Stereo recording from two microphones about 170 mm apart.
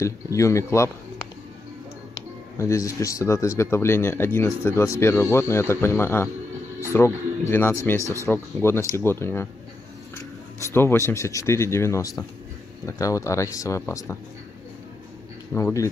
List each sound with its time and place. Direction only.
0.0 s speech: 20° left (ahead or behind)
2.1 s speech: 15° left (ahead or behind)
8.0 s speech: 20° right (ahead or behind)
8.6 s speech: 15° left (ahead or behind)
15.5 s speech: 15° left (ahead or behind)